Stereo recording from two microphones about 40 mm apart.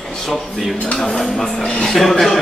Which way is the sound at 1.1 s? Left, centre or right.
Centre.